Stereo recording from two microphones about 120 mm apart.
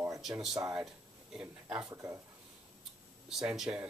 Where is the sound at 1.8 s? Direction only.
30° right (ahead or behind).